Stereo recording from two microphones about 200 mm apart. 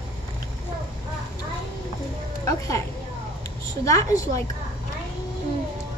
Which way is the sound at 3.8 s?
15° left (ahead or behind).